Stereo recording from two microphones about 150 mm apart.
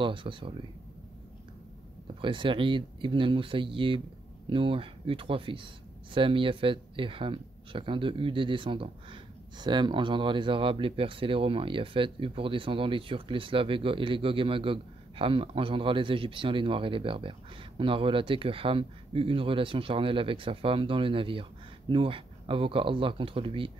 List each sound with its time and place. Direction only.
0.0 s speech: 35° right (ahead or behind)
2.2 s speech: 35° right (ahead or behind)